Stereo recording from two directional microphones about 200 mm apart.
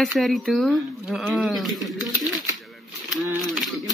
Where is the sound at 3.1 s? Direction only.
Centre (ahead or behind).